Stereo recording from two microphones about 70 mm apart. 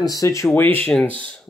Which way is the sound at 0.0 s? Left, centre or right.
Left.